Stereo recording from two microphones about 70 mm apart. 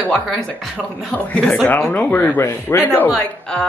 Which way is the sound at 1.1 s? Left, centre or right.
Centre.